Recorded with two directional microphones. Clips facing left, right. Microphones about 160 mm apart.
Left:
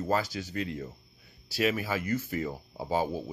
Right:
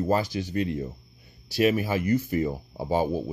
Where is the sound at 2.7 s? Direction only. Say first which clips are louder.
Right 4 dB; 20° right (ahead or behind).